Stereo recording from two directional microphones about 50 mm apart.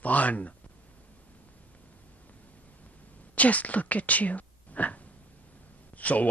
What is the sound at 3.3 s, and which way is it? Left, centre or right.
Speech, left.